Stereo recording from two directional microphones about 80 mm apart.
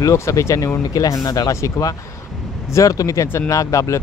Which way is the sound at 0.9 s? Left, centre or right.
Left.